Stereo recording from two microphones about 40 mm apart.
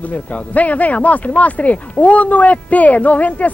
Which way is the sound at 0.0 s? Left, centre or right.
Left.